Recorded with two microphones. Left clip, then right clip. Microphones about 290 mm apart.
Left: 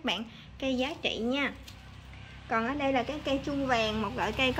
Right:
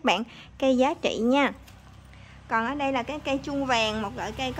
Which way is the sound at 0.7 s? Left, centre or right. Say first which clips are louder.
Right 7 dB; right.